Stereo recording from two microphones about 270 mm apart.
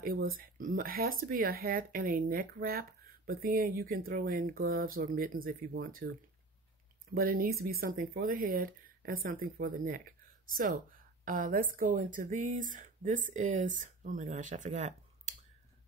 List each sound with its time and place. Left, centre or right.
0.0 s speech: right
7.2 s speech: right